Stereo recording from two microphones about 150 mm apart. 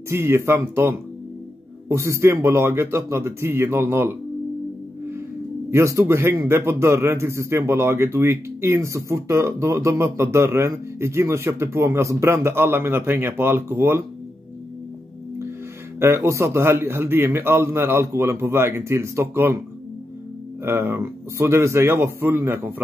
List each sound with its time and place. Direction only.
0.1 s a man's voice: 15° right (ahead or behind)
5.7 s a man's voice: 20° right (ahead or behind)
16.0 s a man's voice: 15° right (ahead or behind)
20.6 s a man's voice: 15° right (ahead or behind)